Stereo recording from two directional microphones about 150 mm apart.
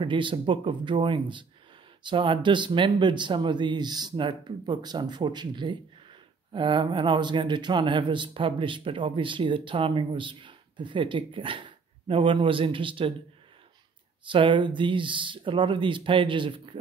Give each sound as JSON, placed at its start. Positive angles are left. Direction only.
{"t": 0.0, "sound": "speech", "side_deg": -35}
{"t": 14.2, "sound": "speech", "side_deg": -35}